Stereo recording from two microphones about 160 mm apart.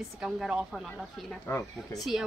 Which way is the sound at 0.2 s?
5° right (ahead or behind).